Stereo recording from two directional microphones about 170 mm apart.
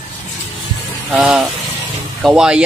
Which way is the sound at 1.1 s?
5° right (ahead or behind).